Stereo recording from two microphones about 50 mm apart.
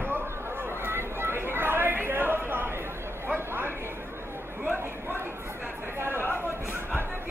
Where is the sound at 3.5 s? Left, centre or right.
Right.